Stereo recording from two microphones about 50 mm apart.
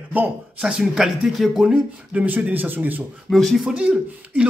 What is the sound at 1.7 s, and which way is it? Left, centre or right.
A man's voice, right.